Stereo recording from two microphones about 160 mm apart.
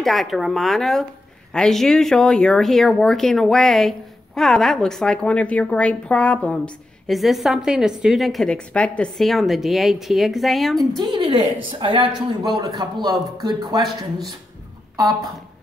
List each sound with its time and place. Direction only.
0.0 s a woman's voice: centre (ahead or behind)
11.0 s speech: 25° right (ahead or behind)